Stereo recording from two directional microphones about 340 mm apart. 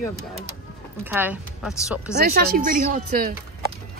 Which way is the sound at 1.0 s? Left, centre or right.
Centre.